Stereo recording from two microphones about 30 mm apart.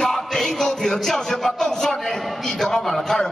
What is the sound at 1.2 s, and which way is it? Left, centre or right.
A man's voice, centre.